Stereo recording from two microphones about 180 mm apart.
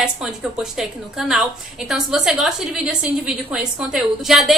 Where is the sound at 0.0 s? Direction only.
5° right (ahead or behind).